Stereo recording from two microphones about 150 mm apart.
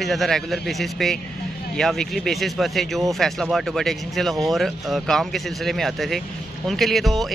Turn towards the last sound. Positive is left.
turn(degrees=0)  # may be behind; listen again after turning